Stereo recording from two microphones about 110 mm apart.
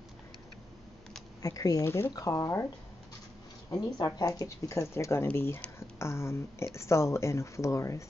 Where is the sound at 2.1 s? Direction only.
30° left (ahead or behind).